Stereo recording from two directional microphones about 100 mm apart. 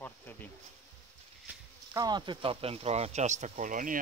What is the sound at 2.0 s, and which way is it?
Speech, 45° right (ahead or behind).